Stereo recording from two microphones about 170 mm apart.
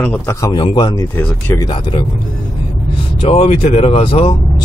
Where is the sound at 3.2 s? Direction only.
40° left (ahead or behind).